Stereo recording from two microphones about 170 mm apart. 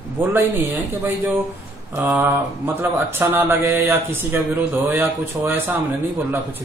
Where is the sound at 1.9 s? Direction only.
10° right (ahead or behind).